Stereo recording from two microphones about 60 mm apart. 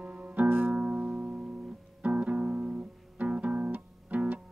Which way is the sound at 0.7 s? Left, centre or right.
Centre.